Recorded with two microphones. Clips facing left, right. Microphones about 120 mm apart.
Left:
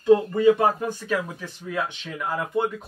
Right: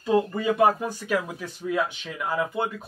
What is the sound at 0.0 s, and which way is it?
Speech, 5° right (ahead or behind).